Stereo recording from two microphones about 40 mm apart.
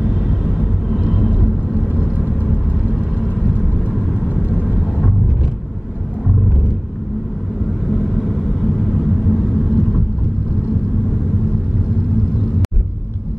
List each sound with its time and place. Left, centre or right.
0.0 s vehicle: centre
1.7 s vehicle: right
3.6 s vehicle: centre
4.4 s vehicle: right
7.9 s vehicle: centre